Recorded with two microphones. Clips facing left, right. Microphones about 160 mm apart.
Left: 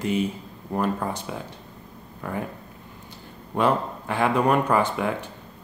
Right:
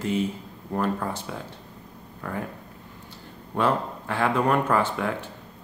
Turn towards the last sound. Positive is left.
turn(degrees=15)  # may be behind; listen again after turning